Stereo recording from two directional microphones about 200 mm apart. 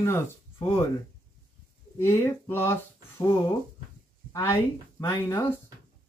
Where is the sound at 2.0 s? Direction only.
10° left (ahead or behind).